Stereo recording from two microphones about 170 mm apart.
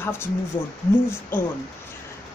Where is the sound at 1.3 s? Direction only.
15° left (ahead or behind).